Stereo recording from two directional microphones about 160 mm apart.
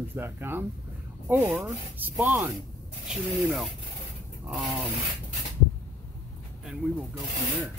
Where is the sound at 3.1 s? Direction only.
Centre (ahead or behind).